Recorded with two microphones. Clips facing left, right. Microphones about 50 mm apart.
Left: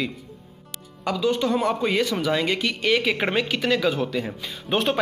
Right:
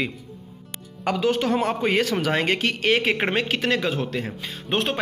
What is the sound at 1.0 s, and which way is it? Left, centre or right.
A man's voice, right.